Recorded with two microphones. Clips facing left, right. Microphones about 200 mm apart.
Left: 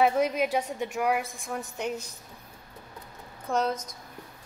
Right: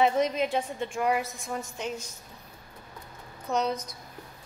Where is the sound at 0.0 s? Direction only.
10° left (ahead or behind).